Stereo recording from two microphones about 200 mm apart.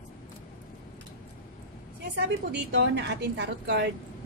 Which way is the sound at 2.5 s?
55° right (ahead or behind).